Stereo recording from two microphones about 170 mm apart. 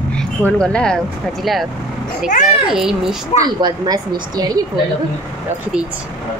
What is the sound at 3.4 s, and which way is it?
Speech, 25° right (ahead or behind).